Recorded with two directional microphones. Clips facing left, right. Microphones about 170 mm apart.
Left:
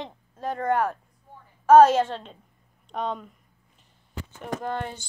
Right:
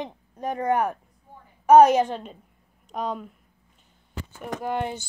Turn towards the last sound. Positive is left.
turn(degrees=-15)  # may be behind; listen again after turning